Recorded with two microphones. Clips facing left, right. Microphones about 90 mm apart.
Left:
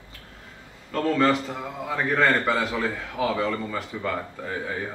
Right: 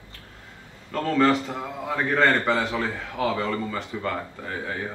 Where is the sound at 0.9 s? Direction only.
Centre (ahead or behind).